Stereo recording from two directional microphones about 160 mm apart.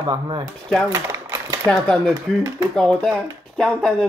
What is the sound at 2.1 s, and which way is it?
Speech, 20° right (ahead or behind).